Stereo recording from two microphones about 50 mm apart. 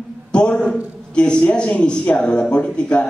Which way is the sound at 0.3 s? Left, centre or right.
Centre.